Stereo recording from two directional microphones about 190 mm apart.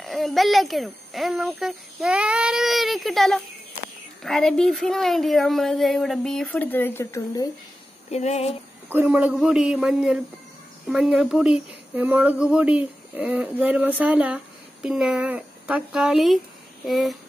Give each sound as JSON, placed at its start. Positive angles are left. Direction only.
{"t": 0.0, "sound": "speech", "side_deg": 0}
{"t": 8.1, "sound": "speech", "side_deg": 35}
{"t": 8.8, "sound": "speech", "side_deg": -10}